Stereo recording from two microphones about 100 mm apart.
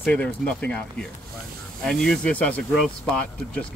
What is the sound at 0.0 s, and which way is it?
Speech, 15° left (ahead or behind).